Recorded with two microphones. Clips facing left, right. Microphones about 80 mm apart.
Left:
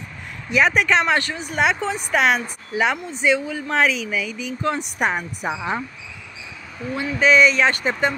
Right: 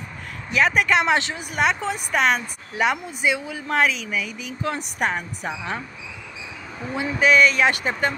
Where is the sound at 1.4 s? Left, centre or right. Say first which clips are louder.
Left 2 dB; centre.